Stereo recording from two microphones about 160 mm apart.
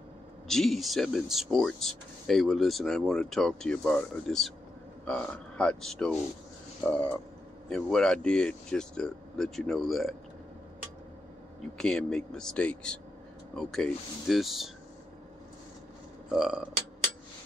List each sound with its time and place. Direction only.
0.5 s speech: centre (ahead or behind)
11.8 s speech: 5° left (ahead or behind)
16.3 s speech: centre (ahead or behind)